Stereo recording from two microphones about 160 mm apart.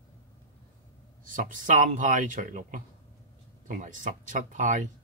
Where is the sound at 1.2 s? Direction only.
55° right (ahead or behind).